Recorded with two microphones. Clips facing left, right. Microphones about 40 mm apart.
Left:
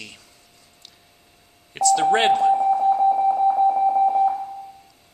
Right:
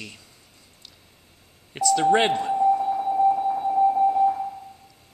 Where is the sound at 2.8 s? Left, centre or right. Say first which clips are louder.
Left 7 dB; centre.